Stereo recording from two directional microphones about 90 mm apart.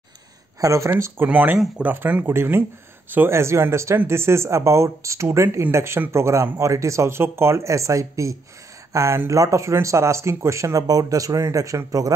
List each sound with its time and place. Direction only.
0.6 s speech: 35° right (ahead or behind)